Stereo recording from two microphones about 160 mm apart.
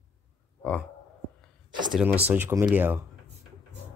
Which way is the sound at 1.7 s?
30° right (ahead or behind).